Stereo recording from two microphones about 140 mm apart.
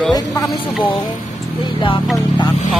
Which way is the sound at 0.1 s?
25° left (ahead or behind).